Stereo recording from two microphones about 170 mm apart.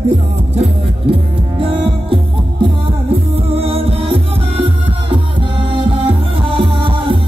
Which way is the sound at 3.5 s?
35° right (ahead or behind).